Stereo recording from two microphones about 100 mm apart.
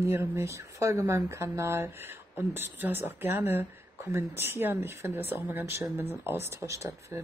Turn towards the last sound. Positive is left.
turn(degrees=-30)  # may be behind; listen again after turning